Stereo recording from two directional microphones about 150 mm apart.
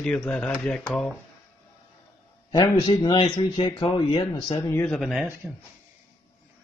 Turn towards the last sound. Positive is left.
turn(degrees=0)  # may be behind; listen again after turning